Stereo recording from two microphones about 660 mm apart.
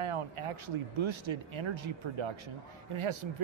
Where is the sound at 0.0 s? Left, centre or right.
Right.